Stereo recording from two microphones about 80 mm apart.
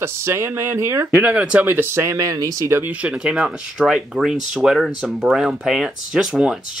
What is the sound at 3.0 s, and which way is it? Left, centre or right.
Speech, centre.